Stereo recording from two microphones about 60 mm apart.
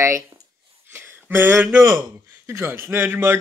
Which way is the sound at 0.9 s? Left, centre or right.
Right.